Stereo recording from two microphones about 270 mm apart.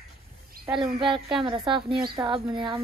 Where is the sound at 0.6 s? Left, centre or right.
Centre.